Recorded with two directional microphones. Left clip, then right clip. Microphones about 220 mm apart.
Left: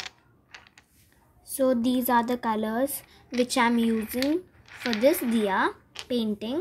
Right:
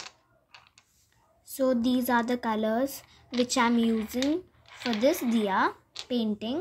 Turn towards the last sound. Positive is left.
turn(degrees=0)  # may be behind; listen again after turning